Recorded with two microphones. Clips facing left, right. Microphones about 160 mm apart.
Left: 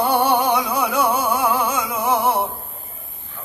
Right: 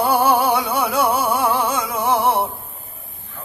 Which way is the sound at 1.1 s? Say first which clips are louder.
Right 1 dB; 30° right (ahead or behind).